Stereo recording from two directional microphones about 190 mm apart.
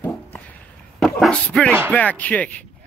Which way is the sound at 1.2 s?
5° left (ahead or behind).